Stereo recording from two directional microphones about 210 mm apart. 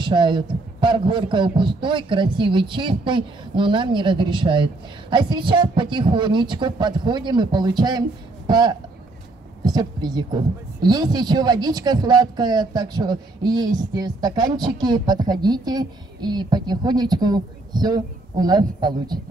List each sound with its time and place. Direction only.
0.0 s speech: 20° right (ahead or behind)